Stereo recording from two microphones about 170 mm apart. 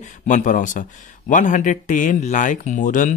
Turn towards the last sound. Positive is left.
turn(degrees=50)  # may be behind; listen again after turning